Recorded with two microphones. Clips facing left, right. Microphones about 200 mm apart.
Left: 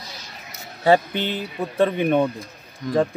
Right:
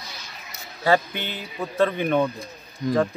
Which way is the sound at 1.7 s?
15° left (ahead or behind).